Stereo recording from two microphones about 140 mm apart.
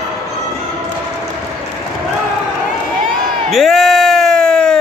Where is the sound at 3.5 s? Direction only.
Centre (ahead or behind).